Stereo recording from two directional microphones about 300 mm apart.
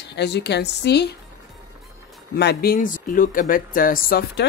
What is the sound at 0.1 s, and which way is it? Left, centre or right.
Speech, left.